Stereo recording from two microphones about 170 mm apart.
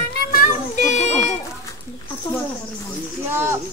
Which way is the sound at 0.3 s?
45° left (ahead or behind).